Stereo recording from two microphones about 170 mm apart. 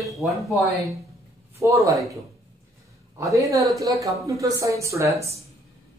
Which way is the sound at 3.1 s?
20° right (ahead or behind).